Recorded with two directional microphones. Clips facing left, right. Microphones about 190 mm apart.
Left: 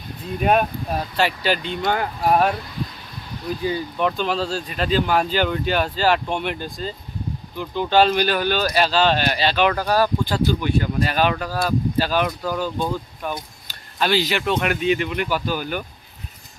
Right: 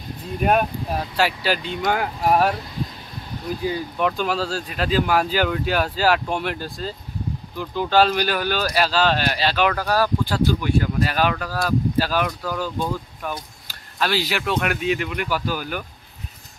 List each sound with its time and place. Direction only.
0.4 s speech: centre (ahead or behind)
3.6 s speech: 5° right (ahead or behind)
12.5 s speech: 20° left (ahead or behind)
13.9 s speech: centre (ahead or behind)